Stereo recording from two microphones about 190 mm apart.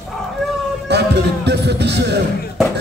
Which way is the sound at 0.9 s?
60° right (ahead or behind).